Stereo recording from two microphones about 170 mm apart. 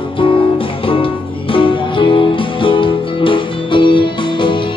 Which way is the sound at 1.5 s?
30° left (ahead or behind).